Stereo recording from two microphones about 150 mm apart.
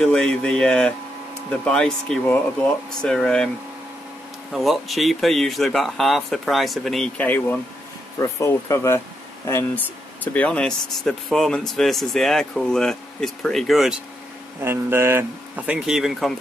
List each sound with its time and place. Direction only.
0.0 s speech: 5° left (ahead or behind)
4.5 s speech: centre (ahead or behind)
14.6 s speech: 15° right (ahead or behind); by 16.3 s centre (ahead or behind)